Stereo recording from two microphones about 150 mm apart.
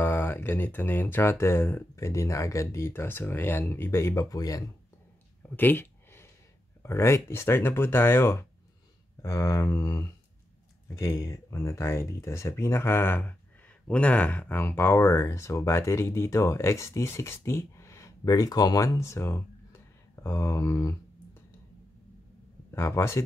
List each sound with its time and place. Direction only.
0.0 s speech: 15° left (ahead or behind)
5.6 s a sound: 15° left (ahead or behind)
6.8 s speech: 15° left (ahead or behind)
22.7 s speech: 20° left (ahead or behind)